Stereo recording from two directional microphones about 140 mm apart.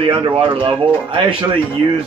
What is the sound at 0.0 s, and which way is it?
Speech, 40° right (ahead or behind).